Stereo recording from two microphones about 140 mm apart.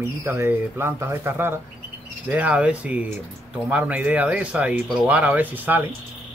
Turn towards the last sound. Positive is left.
turn(degrees=-15)  # may be behind; listen again after turning